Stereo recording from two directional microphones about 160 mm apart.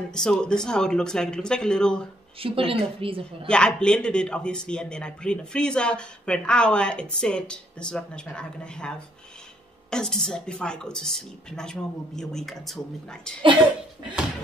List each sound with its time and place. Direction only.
0.1 s a man's voice: 5° left (ahead or behind)
2.4 s a woman's voice: 35° right (ahead or behind)
3.4 s a man's voice: 5° left (ahead or behind)